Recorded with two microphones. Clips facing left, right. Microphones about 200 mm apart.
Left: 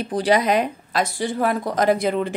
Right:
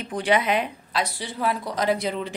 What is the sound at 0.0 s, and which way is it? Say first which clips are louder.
A woman's voice: left 4 dB; 35° left (ahead or behind).